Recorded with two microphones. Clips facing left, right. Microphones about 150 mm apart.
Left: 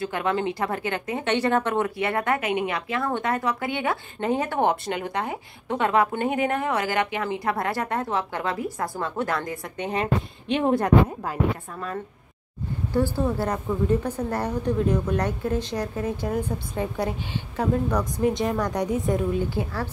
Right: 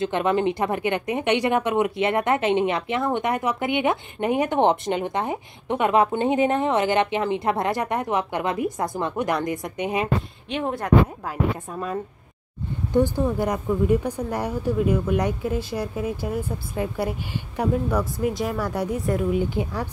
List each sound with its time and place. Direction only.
0.0 s speech: 20° right (ahead or behind); by 11.3 s 5° right (ahead or behind)
11.7 s a woman's voice: 15° right (ahead or behind)
19.3 s a woman's voice: 15° right (ahead or behind)